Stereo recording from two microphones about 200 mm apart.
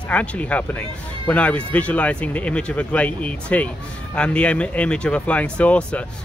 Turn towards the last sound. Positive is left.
turn(degrees=5)  # may be behind; listen again after turning